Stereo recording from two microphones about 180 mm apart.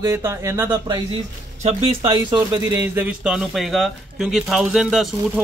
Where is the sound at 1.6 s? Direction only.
30° right (ahead or behind).